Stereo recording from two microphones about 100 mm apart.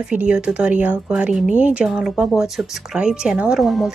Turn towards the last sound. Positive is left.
turn(degrees=0)  # may be behind; listen again after turning